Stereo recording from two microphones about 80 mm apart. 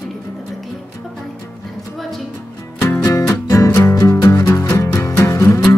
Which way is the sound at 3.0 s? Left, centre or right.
Left.